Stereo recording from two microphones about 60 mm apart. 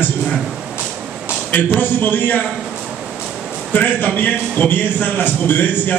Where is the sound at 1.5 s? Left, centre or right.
Left.